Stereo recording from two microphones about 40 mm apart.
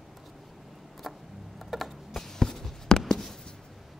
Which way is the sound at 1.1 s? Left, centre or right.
Centre.